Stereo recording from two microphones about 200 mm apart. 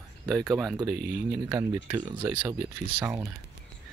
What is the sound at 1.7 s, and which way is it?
Speech, 10° right (ahead or behind).